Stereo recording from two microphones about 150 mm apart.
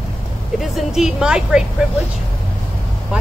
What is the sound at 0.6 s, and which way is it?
Speech, centre (ahead or behind).